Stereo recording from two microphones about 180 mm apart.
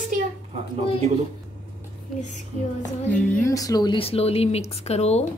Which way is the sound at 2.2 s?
45° left (ahead or behind).